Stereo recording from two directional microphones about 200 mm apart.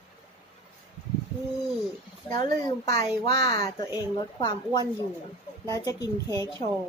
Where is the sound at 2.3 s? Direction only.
20° left (ahead or behind).